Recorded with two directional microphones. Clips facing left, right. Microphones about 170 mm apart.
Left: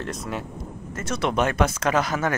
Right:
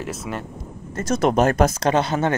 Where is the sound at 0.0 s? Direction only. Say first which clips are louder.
Right 1 dB; 5° right (ahead or behind).